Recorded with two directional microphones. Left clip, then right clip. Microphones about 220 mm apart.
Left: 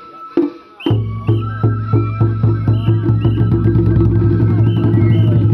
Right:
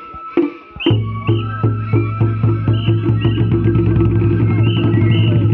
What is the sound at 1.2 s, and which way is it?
Music, centre (ahead or behind).